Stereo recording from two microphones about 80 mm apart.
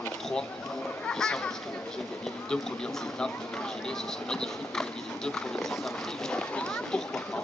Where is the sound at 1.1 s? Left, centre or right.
Centre.